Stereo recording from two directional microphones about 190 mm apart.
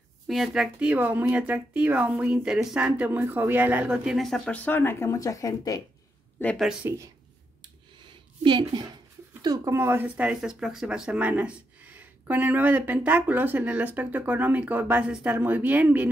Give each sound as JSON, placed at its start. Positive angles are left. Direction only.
{"t": 0.3, "sound": "speech", "side_deg": 0}
{"t": 6.4, "sound": "speech", "side_deg": 0}
{"t": 8.0, "sound": "a sound", "side_deg": -25}
{"t": 9.4, "sound": "speech", "side_deg": -15}